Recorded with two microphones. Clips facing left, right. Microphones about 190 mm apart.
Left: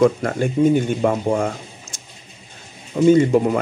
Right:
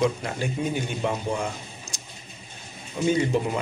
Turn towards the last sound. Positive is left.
turn(degrees=50)  # may be behind; listen again after turning